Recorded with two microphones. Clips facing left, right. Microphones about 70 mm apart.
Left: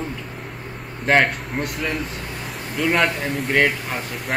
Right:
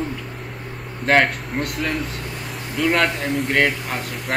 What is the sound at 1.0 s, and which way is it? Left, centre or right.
Speech, centre.